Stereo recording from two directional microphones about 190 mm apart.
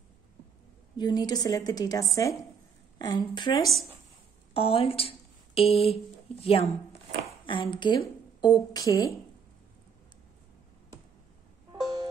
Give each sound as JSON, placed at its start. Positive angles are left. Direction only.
{"t": 0.9, "sound": "a woman's voice", "side_deg": 20}